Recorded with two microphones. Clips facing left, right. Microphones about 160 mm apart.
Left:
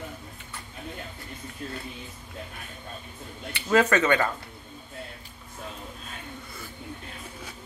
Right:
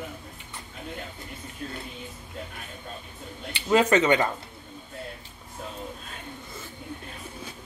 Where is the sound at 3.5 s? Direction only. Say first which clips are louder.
Right 1 dB; 15° right (ahead or behind).